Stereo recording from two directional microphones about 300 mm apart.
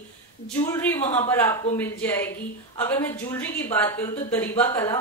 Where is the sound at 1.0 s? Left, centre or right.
Left.